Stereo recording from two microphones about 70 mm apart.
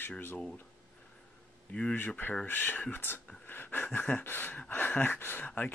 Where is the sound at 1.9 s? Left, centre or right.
Left.